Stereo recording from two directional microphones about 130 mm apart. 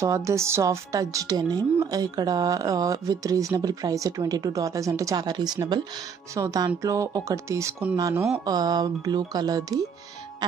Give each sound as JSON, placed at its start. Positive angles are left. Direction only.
{"t": 0.0, "sound": "a woman's voice", "side_deg": -25}